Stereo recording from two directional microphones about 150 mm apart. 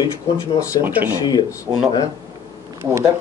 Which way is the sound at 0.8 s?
10° right (ahead or behind).